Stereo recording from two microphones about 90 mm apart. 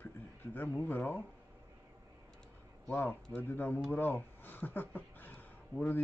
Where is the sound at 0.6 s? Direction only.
20° left (ahead or behind).